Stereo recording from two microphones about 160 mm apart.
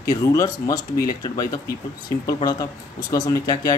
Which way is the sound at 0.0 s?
20° left (ahead or behind).